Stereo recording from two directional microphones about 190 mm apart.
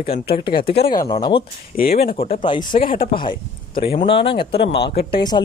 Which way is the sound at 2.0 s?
30° left (ahead or behind).